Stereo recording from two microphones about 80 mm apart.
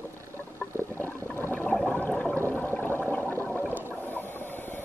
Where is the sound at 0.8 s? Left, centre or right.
Left.